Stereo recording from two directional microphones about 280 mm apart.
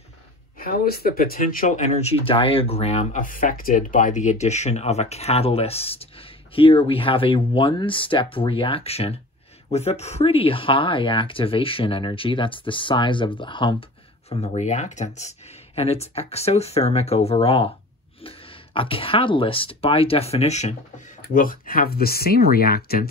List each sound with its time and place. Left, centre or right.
0.6 s speech: left